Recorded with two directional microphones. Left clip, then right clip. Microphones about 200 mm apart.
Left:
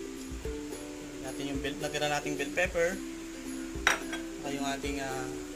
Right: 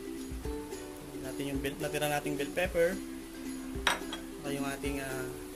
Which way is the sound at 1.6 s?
45° right (ahead or behind).